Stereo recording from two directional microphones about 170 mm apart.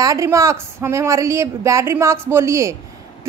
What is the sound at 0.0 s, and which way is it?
A woman's voice, 20° right (ahead or behind).